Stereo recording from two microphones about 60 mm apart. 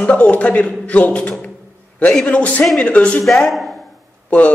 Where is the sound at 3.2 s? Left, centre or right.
Centre.